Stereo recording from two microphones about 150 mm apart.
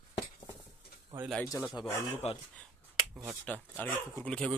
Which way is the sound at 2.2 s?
45° left (ahead or behind).